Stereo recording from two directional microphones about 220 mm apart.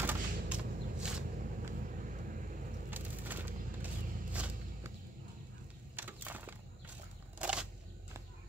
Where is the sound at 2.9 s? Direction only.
10° right (ahead or behind).